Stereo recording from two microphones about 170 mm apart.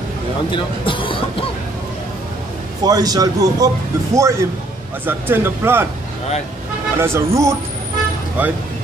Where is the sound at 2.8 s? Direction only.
20° right (ahead or behind).